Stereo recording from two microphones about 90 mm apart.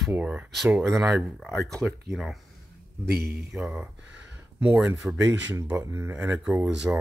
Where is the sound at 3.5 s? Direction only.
5° right (ahead or behind).